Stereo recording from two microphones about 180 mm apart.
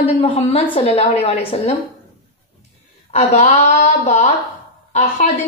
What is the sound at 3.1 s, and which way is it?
A woman's voice, 35° left (ahead or behind).